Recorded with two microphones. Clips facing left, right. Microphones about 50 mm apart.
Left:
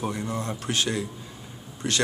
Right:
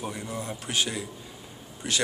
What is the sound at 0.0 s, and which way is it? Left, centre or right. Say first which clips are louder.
A man's voice: left 4 dB; centre.